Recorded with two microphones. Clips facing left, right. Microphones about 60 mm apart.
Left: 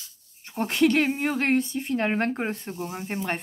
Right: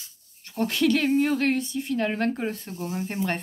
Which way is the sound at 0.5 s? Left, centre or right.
Left.